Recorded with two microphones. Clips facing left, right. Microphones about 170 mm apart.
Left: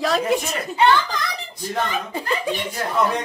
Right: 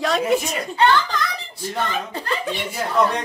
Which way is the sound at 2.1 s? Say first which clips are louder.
Left 2 dB; 15° left (ahead or behind).